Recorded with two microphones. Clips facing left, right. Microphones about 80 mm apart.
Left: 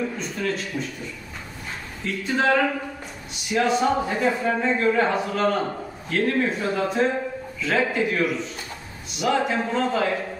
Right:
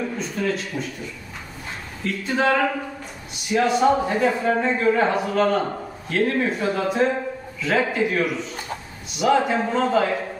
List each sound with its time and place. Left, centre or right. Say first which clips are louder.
0.2 s speech: right 2 dB; centre
2.0 s a man's voice: right 1 dB; centre